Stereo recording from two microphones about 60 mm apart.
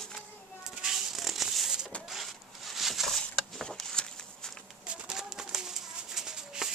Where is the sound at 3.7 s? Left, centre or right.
Centre.